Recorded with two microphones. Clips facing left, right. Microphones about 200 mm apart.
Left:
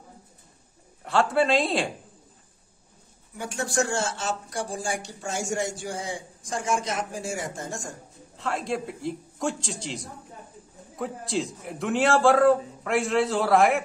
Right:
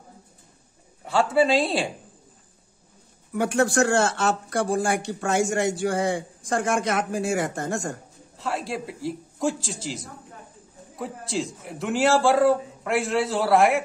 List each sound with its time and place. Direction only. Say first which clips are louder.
1.0 s a man's voice: right 2 dB; centre (ahead or behind)
3.3 s speech: right 7 dB; 65° right (ahead or behind)
8.4 s a man's voice: even; centre (ahead or behind)